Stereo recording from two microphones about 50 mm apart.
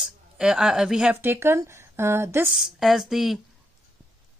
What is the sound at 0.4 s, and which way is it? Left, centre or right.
Speech, centre.